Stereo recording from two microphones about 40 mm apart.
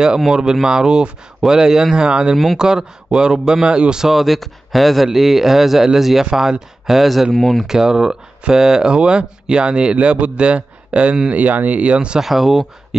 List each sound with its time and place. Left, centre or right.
0.3 s a man's voice: centre
4.1 s a man's voice: centre
7.3 s speech: centre
7.6 s speech: centre; by 11.1 s right
11.2 s speech: right
11.8 s speech: right
12.2 s a man's voice: centre